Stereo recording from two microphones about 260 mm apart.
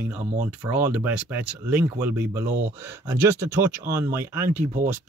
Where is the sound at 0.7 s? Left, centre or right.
Centre.